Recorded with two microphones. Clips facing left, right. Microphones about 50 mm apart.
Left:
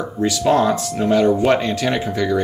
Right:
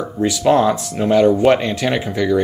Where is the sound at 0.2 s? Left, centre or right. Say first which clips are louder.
Right 2 dB; centre.